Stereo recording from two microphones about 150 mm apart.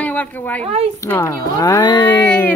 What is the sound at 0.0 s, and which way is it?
Speech, 10° left (ahead or behind).